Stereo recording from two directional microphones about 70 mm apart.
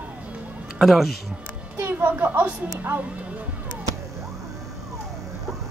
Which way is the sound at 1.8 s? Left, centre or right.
Right.